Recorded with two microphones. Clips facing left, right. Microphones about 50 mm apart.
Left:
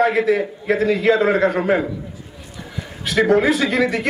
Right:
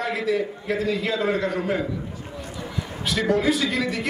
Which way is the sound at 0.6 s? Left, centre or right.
Left.